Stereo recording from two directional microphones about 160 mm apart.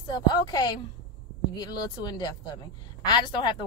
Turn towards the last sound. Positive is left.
turn(degrees=30)  # may be behind; listen again after turning